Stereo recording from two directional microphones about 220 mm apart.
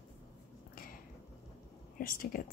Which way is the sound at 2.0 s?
40° left (ahead or behind).